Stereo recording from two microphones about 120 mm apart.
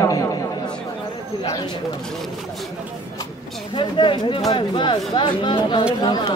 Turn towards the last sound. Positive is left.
turn(degrees=35)  # may be behind; listen again after turning